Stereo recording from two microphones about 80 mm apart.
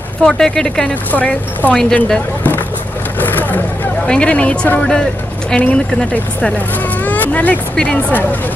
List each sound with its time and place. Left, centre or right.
0.2 s speech: centre
3.2 s vehicle: left
4.1 s speech: centre
7.1 s a sound: centre
7.7 s speech: centre
8.1 s speech: left